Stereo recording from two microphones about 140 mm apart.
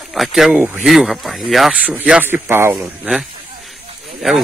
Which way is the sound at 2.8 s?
5° right (ahead or behind).